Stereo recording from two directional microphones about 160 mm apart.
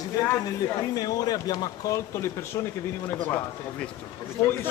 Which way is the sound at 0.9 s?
25° left (ahead or behind).